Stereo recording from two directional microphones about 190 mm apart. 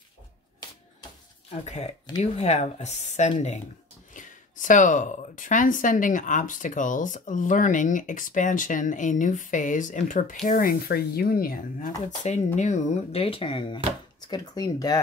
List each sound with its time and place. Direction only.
1.5 s speech: 35° left (ahead or behind); by 11.9 s 50° left (ahead or behind)
12.5 s speech: 40° left (ahead or behind); by 15.0 s 20° left (ahead or behind)